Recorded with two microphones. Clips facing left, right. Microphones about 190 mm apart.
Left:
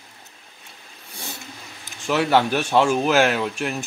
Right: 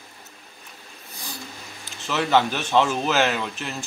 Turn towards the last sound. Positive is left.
turn(degrees=10)  # may be behind; listen again after turning